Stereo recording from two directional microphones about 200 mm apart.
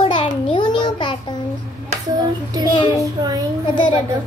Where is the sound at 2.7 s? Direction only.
20° left (ahead or behind).